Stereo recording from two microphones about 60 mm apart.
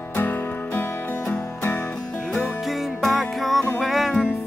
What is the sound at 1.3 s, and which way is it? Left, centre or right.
Music, left.